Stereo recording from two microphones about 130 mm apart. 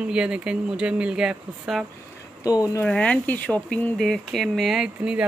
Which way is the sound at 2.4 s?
25° left (ahead or behind).